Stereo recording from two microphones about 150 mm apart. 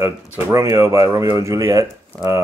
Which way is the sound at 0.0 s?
20° right (ahead or behind).